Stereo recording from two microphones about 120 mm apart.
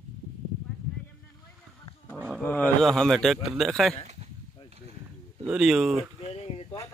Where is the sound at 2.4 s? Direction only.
15° left (ahead or behind).